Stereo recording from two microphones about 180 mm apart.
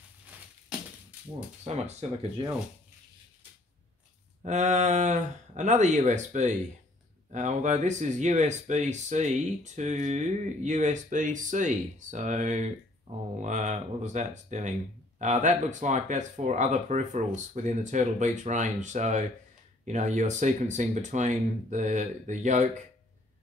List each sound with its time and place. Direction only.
1.6 s speech: 35° right (ahead or behind)
4.4 s speech: 40° right (ahead or behind)